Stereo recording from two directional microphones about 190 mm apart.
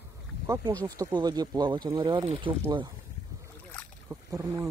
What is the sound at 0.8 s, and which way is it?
Speech, 20° right (ahead or behind).